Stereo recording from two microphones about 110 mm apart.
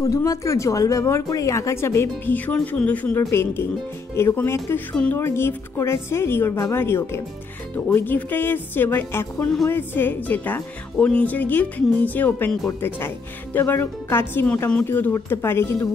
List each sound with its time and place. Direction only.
0.0 s speech: 30° left (ahead or behind); by 14.9 s 10° left (ahead or behind)
14.9 s speech: 20° left (ahead or behind)